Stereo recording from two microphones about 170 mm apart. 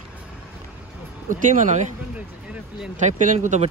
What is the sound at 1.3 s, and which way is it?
Speech, 50° right (ahead or behind).